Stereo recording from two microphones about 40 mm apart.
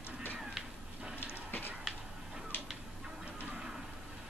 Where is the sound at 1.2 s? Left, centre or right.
Left.